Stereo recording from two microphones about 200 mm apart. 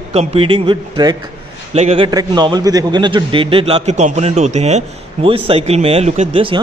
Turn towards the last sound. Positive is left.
turn(degrees=-30)  # may be behind; listen again after turning